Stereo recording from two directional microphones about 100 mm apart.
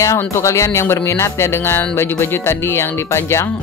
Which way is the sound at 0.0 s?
30° left (ahead or behind).